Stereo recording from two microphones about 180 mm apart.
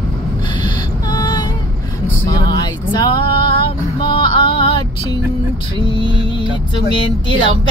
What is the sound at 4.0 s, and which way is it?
Music, 25° left (ahead or behind).